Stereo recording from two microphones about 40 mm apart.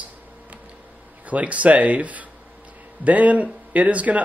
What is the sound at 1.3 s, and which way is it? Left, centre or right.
Speech, right.